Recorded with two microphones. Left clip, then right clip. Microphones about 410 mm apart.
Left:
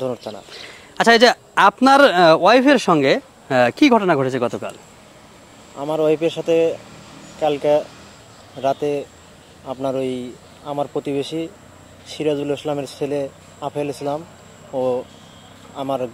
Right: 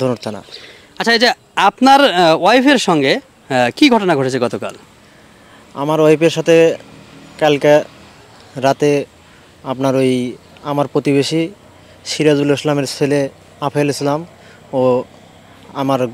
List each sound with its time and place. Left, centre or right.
0.0 s speech: right
0.5 s speech: centre
5.8 s a man's voice: right